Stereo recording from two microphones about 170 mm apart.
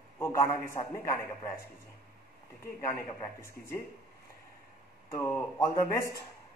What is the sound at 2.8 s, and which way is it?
A man's voice, 20° left (ahead or behind).